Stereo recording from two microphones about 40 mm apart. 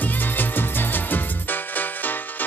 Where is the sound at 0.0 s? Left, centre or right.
Left.